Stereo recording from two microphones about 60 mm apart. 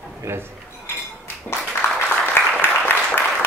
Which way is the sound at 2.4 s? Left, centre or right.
Left.